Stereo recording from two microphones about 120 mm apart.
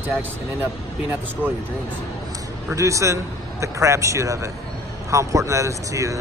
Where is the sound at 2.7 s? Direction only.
25° right (ahead or behind).